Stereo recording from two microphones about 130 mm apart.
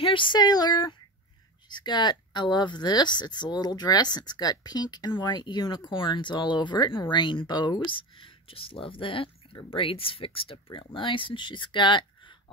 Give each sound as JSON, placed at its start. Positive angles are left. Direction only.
{"t": 0.0, "sound": "speech", "side_deg": 40}